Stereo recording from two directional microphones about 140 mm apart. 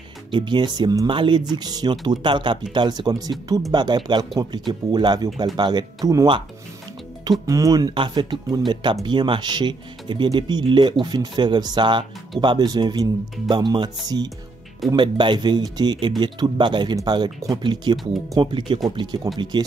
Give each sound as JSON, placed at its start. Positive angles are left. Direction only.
{"t": 0.3, "sound": "speech", "side_deg": -35}